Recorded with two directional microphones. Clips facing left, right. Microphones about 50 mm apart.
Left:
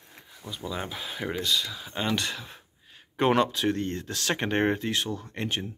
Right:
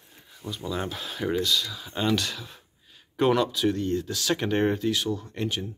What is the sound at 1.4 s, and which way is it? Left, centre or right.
Speech, left.